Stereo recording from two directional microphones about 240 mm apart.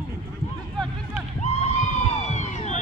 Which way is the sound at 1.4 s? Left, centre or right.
Left.